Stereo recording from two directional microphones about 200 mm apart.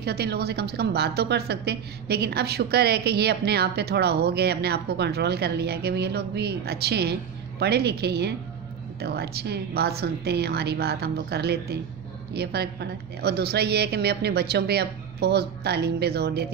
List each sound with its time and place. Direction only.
0.0 s a woman's voice: 55° right (ahead or behind)